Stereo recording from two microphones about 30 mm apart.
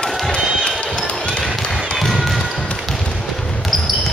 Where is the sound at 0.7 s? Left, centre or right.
Left.